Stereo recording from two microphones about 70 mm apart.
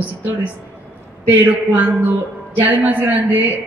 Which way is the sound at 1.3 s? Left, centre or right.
Right.